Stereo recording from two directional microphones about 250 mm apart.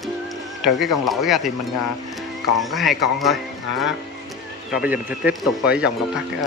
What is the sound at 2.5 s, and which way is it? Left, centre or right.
Speech, centre.